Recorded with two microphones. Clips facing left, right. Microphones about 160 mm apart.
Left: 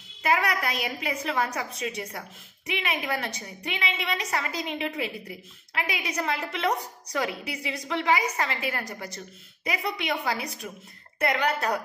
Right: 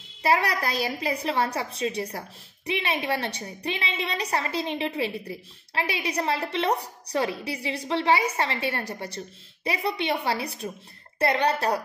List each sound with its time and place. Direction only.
0.2 s a woman's voice: 30° right (ahead or behind)